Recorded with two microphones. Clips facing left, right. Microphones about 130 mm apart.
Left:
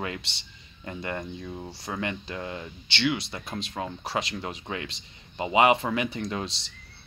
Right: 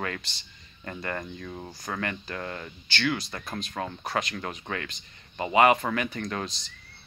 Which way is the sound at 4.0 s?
30° left (ahead or behind).